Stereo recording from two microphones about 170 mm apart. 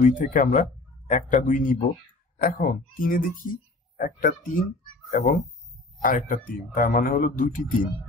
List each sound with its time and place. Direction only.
0.0 s a man's voice: 50° left (ahead or behind)
6.0 s a man's voice: 55° left (ahead or behind)